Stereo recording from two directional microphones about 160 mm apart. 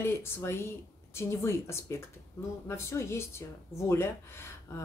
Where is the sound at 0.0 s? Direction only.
15° left (ahead or behind).